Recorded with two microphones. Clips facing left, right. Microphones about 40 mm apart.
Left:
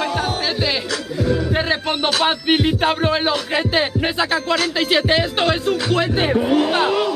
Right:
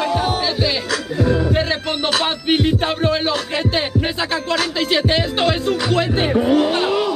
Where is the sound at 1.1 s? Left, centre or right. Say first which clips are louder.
Right 2 dB; centre.